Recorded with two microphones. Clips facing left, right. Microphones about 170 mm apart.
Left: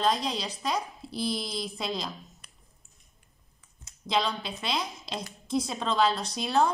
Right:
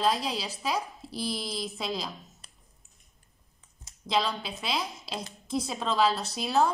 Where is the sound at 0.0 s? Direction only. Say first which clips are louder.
Even; 5° right (ahead or behind).